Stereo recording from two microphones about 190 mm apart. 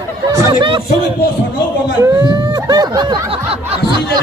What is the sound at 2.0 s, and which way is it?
Snicker, 20° right (ahead or behind).